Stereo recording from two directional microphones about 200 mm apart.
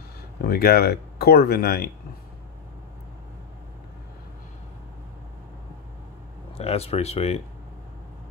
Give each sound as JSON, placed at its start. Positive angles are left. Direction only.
{"t": 0.4, "sound": "speech", "side_deg": 50}
{"t": 6.5, "sound": "speech", "side_deg": 30}